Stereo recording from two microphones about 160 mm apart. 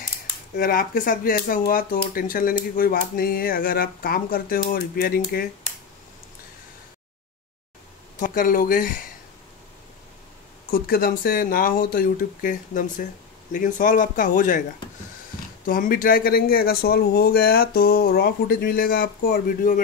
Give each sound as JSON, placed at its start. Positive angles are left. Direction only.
{"t": 0.6, "sound": "speech", "side_deg": 65}
{"t": 8.2, "sound": "speech", "side_deg": 55}
{"t": 10.7, "sound": "speech", "side_deg": 65}
{"t": 15.6, "sound": "speech", "side_deg": 60}